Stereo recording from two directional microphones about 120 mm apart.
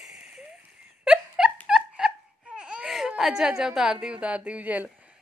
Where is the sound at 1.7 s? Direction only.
5° right (ahead or behind).